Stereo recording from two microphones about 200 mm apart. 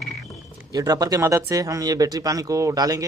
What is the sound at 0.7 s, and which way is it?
Speech, 15° right (ahead or behind).